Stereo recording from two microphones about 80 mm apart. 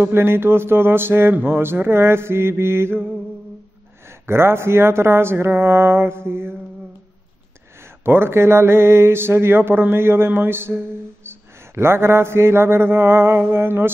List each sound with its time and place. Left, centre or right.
0.0 s speech: right
4.1 s speech: right
7.8 s speech: right
11.2 s a sound: right